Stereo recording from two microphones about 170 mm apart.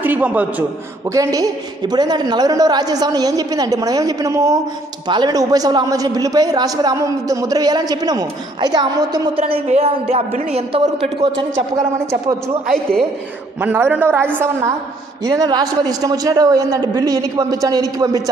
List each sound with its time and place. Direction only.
0.0 s a man's voice: 10° right (ahead or behind)
1.1 s a man's voice: 20° right (ahead or behind)
9.4 s a man's voice: 40° right (ahead or behind)
11.5 s a man's voice: 20° right (ahead or behind)
13.6 s a man's voice: 10° right (ahead or behind)